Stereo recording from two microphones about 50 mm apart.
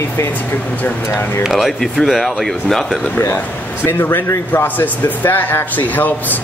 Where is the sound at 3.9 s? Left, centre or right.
Left.